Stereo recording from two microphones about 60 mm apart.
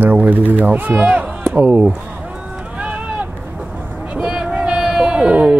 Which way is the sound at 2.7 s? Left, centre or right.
Right.